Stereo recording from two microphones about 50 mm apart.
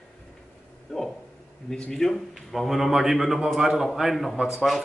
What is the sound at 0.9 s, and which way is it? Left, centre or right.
Speech, centre.